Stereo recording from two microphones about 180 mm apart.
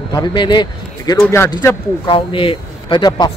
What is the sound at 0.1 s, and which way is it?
Speech, 25° left (ahead or behind).